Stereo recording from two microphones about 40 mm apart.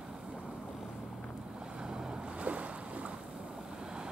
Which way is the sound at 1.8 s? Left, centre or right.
Centre.